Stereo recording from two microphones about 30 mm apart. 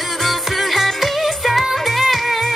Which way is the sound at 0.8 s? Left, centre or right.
Centre.